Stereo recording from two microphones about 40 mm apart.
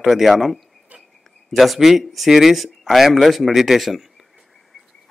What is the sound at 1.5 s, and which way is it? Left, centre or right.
Speech, centre.